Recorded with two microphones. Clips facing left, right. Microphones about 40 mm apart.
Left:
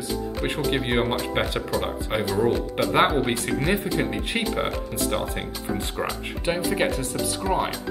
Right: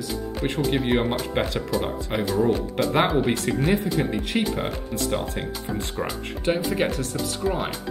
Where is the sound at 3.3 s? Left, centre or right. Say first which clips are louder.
Right 1 dB; left.